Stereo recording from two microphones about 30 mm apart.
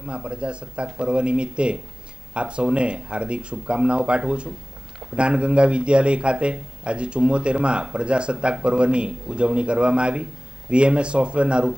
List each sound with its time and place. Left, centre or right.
0.0 s speech: right